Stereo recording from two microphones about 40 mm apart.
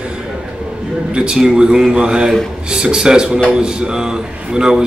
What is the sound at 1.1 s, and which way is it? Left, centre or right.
A man's voice, right.